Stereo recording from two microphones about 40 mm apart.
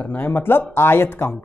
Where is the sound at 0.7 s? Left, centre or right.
Left.